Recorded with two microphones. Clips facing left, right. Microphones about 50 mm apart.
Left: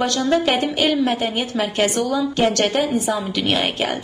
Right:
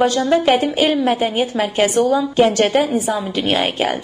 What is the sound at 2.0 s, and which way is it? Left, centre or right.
A woman's voice, right.